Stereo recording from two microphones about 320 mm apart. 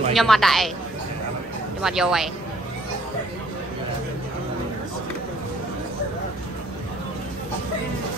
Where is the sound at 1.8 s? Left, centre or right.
Centre.